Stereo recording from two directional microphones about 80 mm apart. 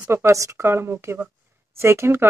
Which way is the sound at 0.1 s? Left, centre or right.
Right.